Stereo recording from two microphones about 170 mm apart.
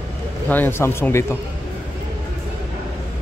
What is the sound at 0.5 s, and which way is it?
Speech, 10° left (ahead or behind).